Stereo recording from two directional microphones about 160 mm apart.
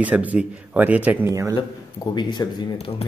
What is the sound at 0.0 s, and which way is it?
Speech, 10° right (ahead or behind).